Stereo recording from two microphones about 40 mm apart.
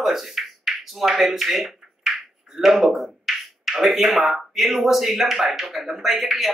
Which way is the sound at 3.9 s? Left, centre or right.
Centre.